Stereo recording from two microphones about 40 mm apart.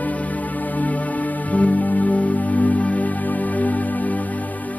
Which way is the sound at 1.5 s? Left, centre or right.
Left.